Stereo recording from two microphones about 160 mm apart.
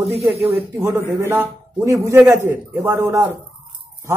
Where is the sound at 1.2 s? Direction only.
15° right (ahead or behind).